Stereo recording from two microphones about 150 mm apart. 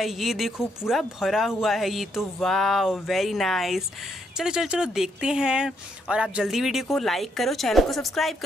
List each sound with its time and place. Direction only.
0.0 s speech: centre (ahead or behind)